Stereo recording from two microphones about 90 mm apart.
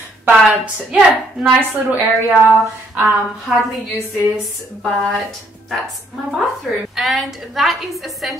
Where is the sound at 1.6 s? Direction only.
20° right (ahead or behind).